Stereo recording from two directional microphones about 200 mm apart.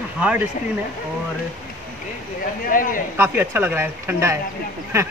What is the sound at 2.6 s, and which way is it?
Speech, 45° left (ahead or behind).